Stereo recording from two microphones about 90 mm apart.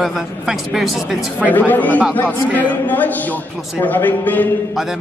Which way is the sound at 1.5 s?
20° left (ahead or behind).